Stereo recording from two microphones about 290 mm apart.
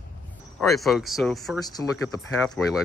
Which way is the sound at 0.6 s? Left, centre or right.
Centre.